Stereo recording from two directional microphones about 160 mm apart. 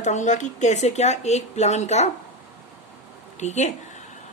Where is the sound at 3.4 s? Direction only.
45° left (ahead or behind).